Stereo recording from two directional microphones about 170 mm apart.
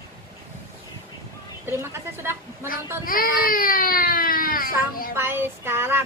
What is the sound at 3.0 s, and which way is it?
Baby cry, 60° left (ahead or behind).